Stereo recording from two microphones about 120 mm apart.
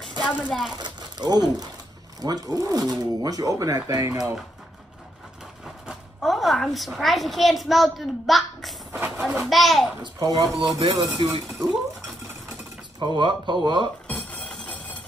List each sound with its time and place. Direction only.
0.2 s a sound: 15° left (ahead or behind)
0.5 s a woman's voice: 5° right (ahead or behind)
0.7 s speech: 35° right (ahead or behind)
5.9 s a woman's voice: centre (ahead or behind)
8.9 s speech: 15° right (ahead or behind)
9.3 s a woman's voice: centre (ahead or behind)
10.1 s speech: 30° right (ahead or behind)
10.5 s a woman's voice: centre (ahead or behind)
11.2 s speech: 45° right (ahead or behind)
13.0 s speech: 40° right (ahead or behind)
14.0 s music: 5° left (ahead or behind)